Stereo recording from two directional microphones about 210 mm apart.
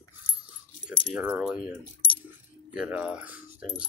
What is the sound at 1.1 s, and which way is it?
Speech, 5° right (ahead or behind).